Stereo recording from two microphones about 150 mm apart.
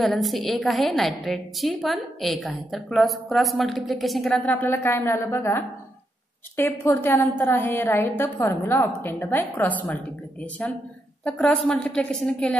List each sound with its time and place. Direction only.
0.0 s a woman's voice: centre (ahead or behind)